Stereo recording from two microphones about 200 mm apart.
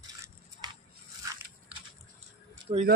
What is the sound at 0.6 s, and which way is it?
Biting, 20° right (ahead or behind).